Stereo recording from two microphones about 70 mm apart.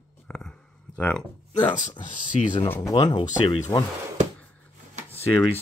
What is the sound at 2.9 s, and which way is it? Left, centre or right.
Speech, left.